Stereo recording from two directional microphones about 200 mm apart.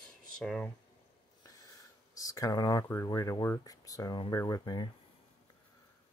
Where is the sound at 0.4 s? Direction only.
Centre (ahead or behind).